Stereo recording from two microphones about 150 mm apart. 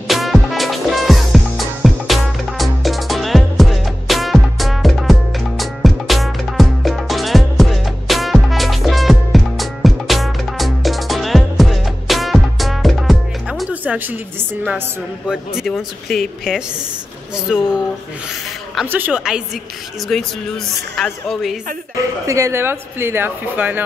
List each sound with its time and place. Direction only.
0.1 s music: centre (ahead or behind)
13.7 s a woman's voice: 10° right (ahead or behind)
18.9 s a woman's voice: 10° right (ahead or behind)
21.9 s speech: 20° right (ahead or behind)